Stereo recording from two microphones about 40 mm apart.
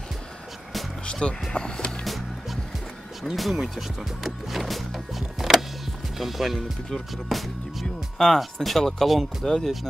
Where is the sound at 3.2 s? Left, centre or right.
Centre.